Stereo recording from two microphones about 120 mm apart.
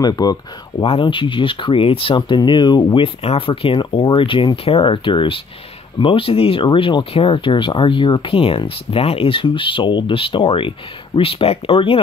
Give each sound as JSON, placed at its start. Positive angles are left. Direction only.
{"t": 0.0, "sound": "speech", "side_deg": 35}
{"t": 0.7, "sound": "speech", "side_deg": 45}